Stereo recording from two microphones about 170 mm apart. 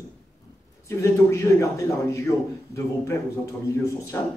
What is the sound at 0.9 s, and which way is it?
Speech, 15° left (ahead or behind).